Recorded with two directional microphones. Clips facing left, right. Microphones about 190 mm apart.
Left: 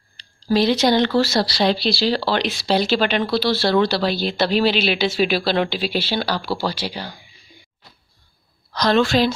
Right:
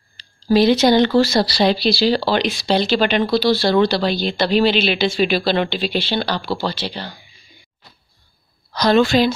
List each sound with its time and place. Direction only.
0.2 s speech: centre (ahead or behind)
8.7 s speech: centre (ahead or behind)